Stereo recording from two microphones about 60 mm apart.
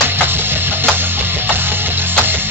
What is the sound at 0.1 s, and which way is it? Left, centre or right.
Music, right.